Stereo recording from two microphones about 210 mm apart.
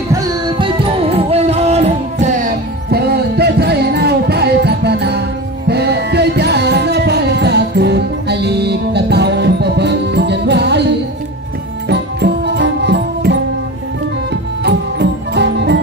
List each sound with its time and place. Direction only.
0.1 s music: 20° right (ahead or behind); by 10.9 s 55° right (ahead or behind)
11.9 s music: 55° right (ahead or behind)
14.6 s music: 55° right (ahead or behind)